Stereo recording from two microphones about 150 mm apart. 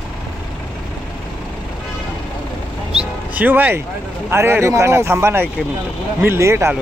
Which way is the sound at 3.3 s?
10° right (ahead or behind).